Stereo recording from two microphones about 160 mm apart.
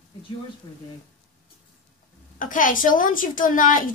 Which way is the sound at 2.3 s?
55° left (ahead or behind).